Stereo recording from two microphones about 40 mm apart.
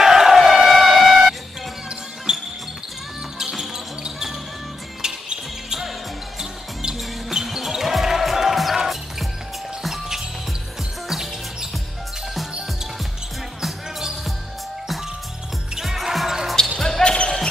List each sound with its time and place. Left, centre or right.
0.0 s crowd: centre
2.3 s music: centre
5.0 s basketball bounce: centre
7.2 s basketball bounce: centre
13.6 s basketball bounce: centre
15.8 s music: centre
16.6 s basketball bounce: centre
17.0 s basketball bounce: left